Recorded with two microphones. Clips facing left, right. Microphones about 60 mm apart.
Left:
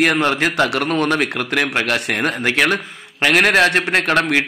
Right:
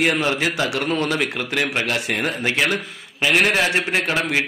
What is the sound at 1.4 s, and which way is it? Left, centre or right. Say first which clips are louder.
Speech: left 3 dB; left.